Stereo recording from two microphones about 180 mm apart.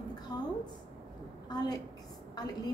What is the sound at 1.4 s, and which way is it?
Speech, 20° left (ahead or behind).